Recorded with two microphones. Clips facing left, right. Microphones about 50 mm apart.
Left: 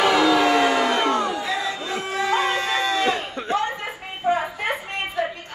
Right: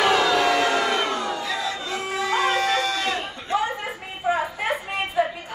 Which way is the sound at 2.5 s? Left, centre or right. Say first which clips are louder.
Even; left.